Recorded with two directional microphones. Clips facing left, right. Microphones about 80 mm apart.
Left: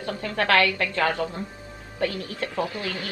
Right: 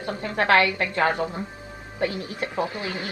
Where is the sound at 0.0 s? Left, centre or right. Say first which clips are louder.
Right 1 dB; right.